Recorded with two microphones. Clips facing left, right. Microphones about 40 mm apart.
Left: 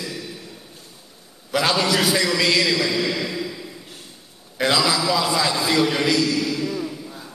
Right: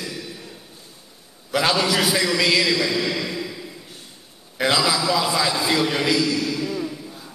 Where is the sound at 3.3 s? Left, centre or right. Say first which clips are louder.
Left 1 dB; centre.